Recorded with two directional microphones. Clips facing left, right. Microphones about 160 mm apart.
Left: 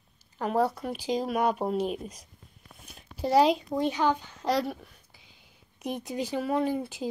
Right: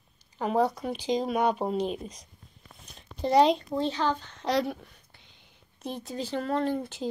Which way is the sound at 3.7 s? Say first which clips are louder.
Left 2 dB; 15° left (ahead or behind).